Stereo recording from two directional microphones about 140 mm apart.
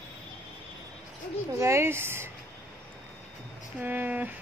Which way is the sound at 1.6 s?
20° right (ahead or behind).